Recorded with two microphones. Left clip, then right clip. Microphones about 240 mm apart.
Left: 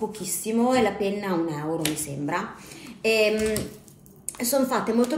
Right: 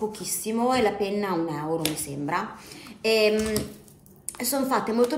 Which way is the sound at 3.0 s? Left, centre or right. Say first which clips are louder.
Even; centre.